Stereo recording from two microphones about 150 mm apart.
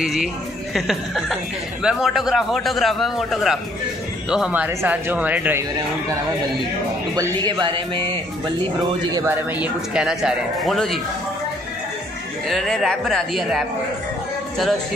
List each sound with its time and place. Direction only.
0.0 s speech: 5° right (ahead or behind)
7.2 s speech: 30° right (ahead or behind)
9.1 s speech: 15° right (ahead or behind); by 11.0 s centre (ahead or behind)
12.4 s speech: centre (ahead or behind)